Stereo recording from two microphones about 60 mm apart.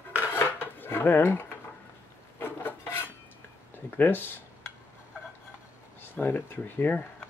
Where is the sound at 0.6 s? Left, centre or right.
Left.